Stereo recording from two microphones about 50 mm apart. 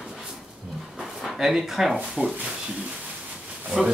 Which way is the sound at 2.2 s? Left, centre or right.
Centre.